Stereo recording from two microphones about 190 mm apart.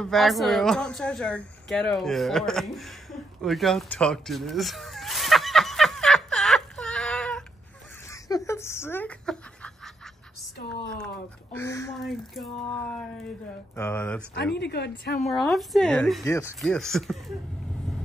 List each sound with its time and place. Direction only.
0.0 s a sound: centre (ahead or behind)
8.5 s speech: 15° left (ahead or behind)
11.5 s speech: 15° left (ahead or behind)
12.0 s speech: centre (ahead or behind)
14.3 s a woman's voice: 60° left (ahead or behind)
15.2 s speech: centre (ahead or behind)
16.3 s speech: 15° left (ahead or behind)
16.6 s speech: 5° left (ahead or behind)